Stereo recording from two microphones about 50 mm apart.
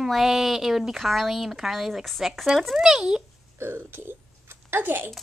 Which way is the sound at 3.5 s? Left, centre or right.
Right.